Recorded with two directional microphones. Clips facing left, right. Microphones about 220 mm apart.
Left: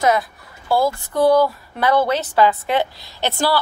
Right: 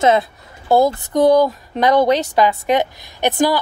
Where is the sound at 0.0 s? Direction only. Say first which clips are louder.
Right 3 dB; 25° right (ahead or behind).